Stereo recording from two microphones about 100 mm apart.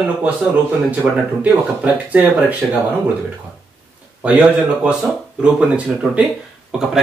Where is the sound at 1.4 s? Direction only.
15° right (ahead or behind).